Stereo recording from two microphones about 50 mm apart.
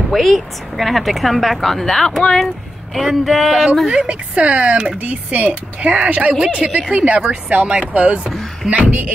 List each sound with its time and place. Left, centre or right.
0.1 s speech: centre
4.1 s speech: right